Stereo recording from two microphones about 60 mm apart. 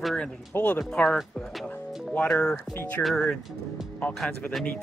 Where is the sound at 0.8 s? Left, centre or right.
Centre.